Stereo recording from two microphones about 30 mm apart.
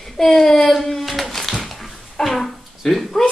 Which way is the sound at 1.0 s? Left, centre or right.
Centre.